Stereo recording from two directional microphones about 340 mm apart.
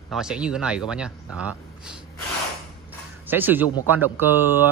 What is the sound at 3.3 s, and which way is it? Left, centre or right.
Speech, centre.